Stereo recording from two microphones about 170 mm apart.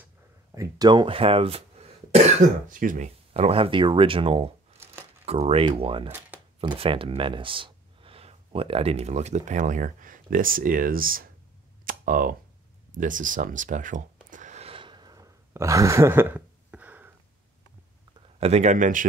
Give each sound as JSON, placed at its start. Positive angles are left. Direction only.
{"t": 0.6, "sound": "speech", "side_deg": -25}
{"t": 2.7, "sound": "speech", "side_deg": -50}
{"t": 3.3, "sound": "speech", "side_deg": -35}
{"t": 11.8, "sound": "a sound", "side_deg": -55}
{"t": 18.4, "sound": "speech", "side_deg": -40}